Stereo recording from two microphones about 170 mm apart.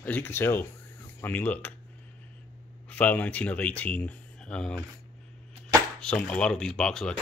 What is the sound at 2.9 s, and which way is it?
Speech, 10° left (ahead or behind).